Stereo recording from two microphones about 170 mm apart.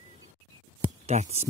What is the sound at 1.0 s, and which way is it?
Speech, 40° right (ahead or behind).